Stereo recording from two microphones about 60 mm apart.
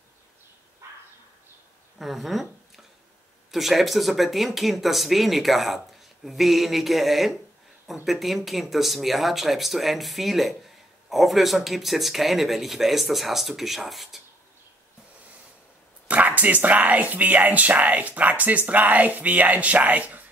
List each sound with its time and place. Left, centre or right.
2.0 s a sound: centre
3.5 s speech: centre
16.1 s speech: right